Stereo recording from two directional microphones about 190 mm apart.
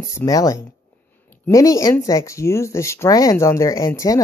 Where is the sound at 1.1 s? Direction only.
10° left (ahead or behind).